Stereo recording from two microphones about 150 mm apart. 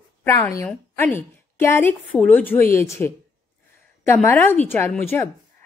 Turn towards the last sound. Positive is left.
turn(degrees=15)  # may be behind; listen again after turning